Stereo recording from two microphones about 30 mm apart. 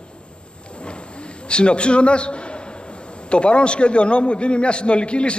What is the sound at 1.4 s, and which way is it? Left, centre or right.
A man's voice, left.